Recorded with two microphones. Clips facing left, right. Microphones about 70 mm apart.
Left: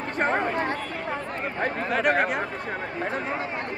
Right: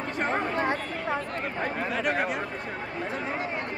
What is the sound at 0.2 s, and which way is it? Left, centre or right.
Chatter, left.